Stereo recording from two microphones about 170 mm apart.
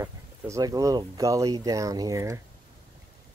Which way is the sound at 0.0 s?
20° right (ahead or behind).